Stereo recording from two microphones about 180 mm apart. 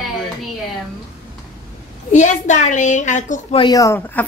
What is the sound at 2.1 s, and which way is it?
A woman's voice, 40° left (ahead or behind).